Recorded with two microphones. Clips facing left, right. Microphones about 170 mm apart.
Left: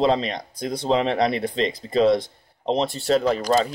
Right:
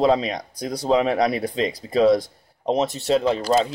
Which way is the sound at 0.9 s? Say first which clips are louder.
Right 2 dB; 10° right (ahead or behind).